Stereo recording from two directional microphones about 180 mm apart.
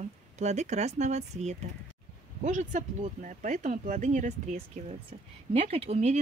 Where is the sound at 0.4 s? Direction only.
40° right (ahead or behind).